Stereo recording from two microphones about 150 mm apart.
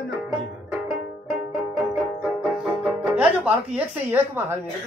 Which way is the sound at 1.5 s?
5° right (ahead or behind).